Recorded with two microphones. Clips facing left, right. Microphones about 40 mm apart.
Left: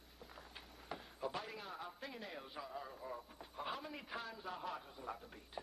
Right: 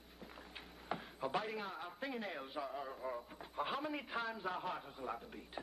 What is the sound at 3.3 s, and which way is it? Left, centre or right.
Speech, right.